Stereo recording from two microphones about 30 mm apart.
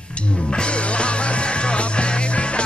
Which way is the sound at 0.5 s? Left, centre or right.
Left.